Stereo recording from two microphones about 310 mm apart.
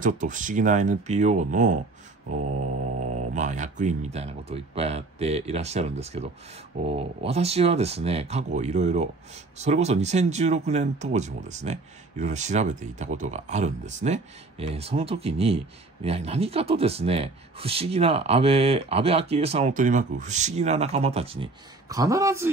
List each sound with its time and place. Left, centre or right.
0.0 s speech: right
3.3 s speech: right